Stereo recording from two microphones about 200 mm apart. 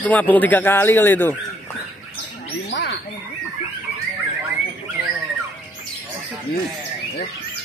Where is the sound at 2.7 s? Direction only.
55° left (ahead or behind).